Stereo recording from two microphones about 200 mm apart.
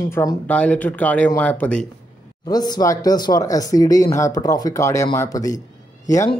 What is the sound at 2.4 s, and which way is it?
Speech, 20° left (ahead or behind).